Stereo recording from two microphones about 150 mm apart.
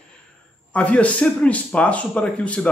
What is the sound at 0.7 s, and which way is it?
A man's voice, 10° left (ahead or behind).